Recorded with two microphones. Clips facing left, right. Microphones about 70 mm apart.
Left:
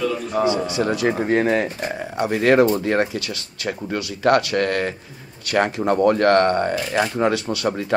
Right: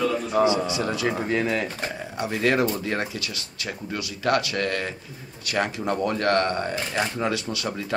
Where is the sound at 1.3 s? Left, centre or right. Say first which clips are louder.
Left 6 dB; left.